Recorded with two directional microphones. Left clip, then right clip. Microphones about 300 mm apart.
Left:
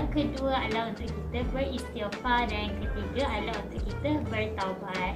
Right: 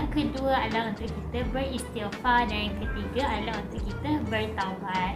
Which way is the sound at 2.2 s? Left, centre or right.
Centre.